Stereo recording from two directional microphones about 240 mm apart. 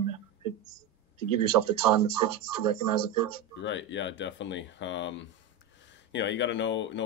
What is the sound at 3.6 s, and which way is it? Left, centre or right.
Speech, left.